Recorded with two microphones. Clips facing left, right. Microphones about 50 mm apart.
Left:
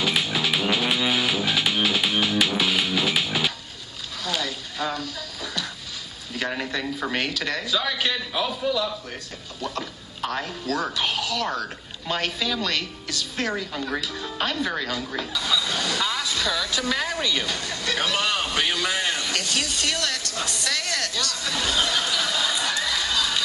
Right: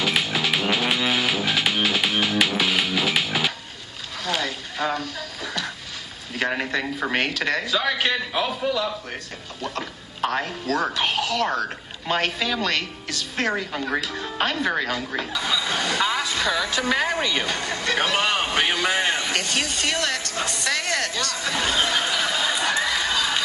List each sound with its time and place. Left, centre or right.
0.0 s music: right
2.0 s music: right
2.3 s music: right
4.2 s a sound: right
6.3 s a man's voice: right